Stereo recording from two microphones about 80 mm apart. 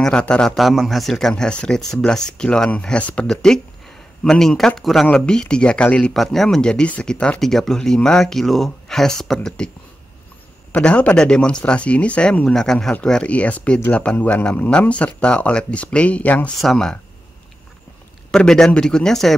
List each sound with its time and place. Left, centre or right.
0.0 s a man's voice: centre
6.1 s speech: centre
10.7 s a man's voice: centre
16.5 s speech: centre
18.3 s a man's voice: centre